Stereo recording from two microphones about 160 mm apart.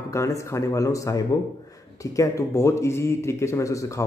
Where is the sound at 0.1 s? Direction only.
20° left (ahead or behind).